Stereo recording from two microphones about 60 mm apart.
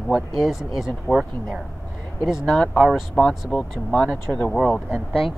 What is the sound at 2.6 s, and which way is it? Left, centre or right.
Speech, centre.